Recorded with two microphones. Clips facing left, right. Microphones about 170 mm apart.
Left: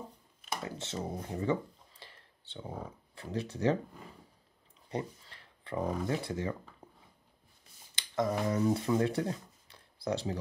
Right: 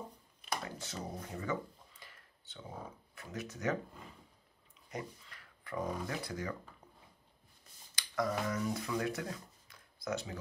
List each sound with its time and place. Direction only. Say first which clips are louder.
0.5 s a sound: left 2 dB; 25° left (ahead or behind)
3.2 s speech: left 8 dB; 30° left (ahead or behind)
4.8 s speech: left 6 dB; 30° left (ahead or behind)
7.9 s speech: left 4 dB; 25° left (ahead or behind)